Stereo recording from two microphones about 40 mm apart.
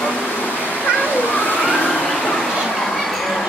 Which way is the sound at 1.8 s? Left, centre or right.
Left.